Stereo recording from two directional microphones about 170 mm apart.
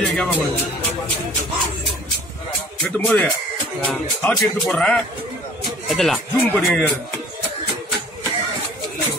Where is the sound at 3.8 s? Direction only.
5° left (ahead or behind).